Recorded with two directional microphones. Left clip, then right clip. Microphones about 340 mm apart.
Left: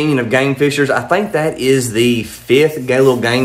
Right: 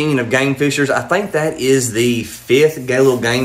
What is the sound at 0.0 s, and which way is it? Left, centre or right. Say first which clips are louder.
Speech: left 1 dB; centre.